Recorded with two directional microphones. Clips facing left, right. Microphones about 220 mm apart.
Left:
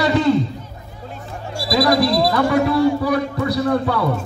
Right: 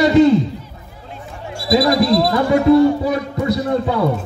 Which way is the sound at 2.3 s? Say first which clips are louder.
Right 4 dB; 20° right (ahead or behind).